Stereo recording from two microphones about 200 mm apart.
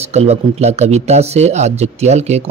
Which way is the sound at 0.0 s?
30° right (ahead or behind).